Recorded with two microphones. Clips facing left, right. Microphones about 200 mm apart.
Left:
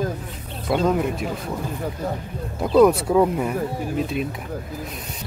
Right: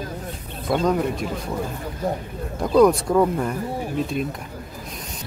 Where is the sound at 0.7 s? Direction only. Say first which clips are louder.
Even; 5° left (ahead or behind).